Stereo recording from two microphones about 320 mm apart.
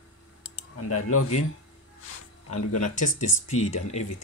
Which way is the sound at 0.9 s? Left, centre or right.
Left.